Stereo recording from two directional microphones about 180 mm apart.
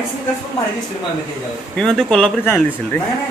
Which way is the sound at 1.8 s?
5° left (ahead or behind).